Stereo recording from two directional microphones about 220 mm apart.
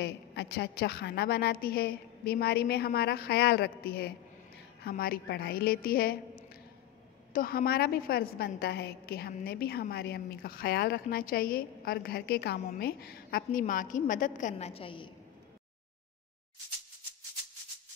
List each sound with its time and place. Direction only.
0.0 s a woman's voice: 50° left (ahead or behind); by 15.0 s 25° left (ahead or behind)